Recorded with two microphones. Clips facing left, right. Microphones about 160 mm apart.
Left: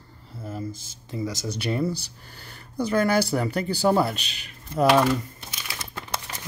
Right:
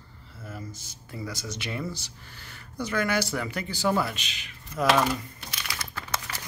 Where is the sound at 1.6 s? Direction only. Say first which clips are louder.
Left 9 dB; 35° left (ahead or behind).